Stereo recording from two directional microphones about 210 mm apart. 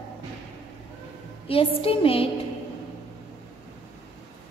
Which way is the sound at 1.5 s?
25° left (ahead or behind).